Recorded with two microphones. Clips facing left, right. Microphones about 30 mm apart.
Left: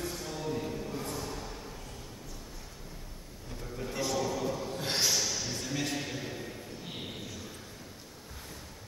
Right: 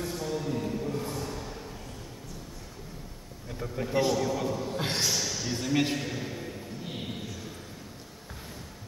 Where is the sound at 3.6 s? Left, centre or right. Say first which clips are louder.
Right 8 dB; right.